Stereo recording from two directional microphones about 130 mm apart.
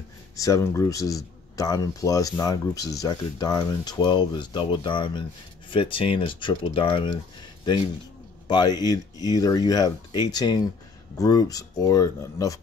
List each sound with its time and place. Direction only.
0.4 s speech: 25° left (ahead or behind); by 7.2 s 40° left (ahead or behind)
8.5 s speech: 35° left (ahead or behind)